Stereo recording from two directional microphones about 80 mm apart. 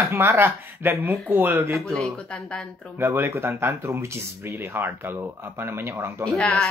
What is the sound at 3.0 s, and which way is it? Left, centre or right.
Speech, right.